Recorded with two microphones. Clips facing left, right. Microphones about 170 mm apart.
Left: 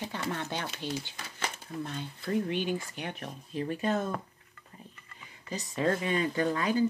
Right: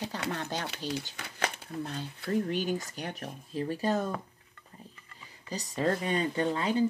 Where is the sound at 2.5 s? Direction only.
40° right (ahead or behind).